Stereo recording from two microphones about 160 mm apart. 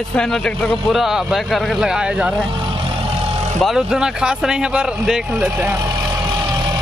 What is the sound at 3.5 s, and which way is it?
Speech, centre (ahead or behind).